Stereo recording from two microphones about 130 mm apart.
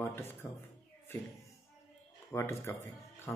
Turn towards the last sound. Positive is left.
turn(degrees=20)  # may be behind; listen again after turning